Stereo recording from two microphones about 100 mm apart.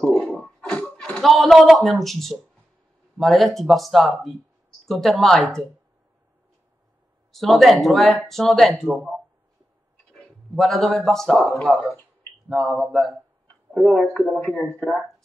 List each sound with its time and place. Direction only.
0.0 s a sound: 10° left (ahead or behind)
3.2 s speech: centre (ahead or behind)
7.3 s speech: centre (ahead or behind)
10.1 s speech: 5° left (ahead or behind)
11.9 s a sound: 20° left (ahead or behind)
12.4 s speech: centre (ahead or behind)